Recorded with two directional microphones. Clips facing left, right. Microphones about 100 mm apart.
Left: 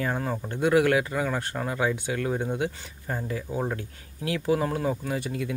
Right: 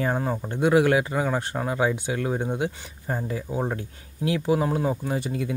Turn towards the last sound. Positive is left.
turn(degrees=-30)  # may be behind; listen again after turning